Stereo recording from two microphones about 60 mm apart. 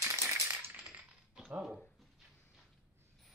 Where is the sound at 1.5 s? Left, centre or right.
Centre.